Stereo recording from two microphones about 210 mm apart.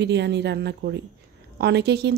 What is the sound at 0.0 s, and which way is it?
A woman's voice, 55° right (ahead or behind).